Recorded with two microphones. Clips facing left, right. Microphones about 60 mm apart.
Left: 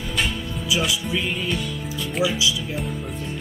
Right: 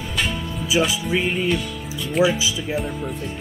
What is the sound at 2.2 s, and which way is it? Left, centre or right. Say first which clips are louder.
Speech: right 2 dB; right.